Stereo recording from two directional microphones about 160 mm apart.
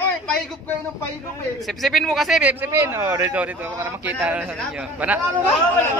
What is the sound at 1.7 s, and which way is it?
Speech, centre (ahead or behind).